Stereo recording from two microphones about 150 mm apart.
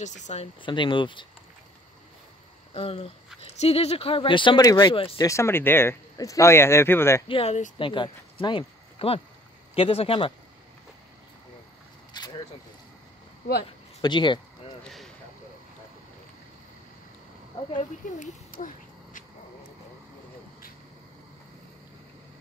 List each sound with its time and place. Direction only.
0.0 s speech: 50° left (ahead or behind)
0.6 s speech: 35° left (ahead or behind)
2.7 s speech: 40° left (ahead or behind)
5.1 s speech: 20° left (ahead or behind)
7.2 s speech: 35° left (ahead or behind)
12.1 s a sound: 30° left (ahead or behind)
13.7 s a sound: 30° left (ahead or behind)
17.7 s speech: 60° left (ahead or behind)